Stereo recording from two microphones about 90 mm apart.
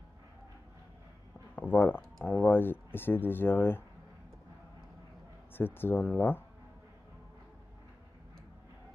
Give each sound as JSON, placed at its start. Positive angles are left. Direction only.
{"t": 1.5, "sound": "a sound", "side_deg": 20}
{"t": 2.2, "sound": "speech", "side_deg": 20}
{"t": 5.5, "sound": "speech", "side_deg": 25}